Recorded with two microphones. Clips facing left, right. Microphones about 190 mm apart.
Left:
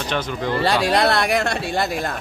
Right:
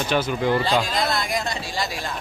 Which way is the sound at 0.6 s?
70° left (ahead or behind).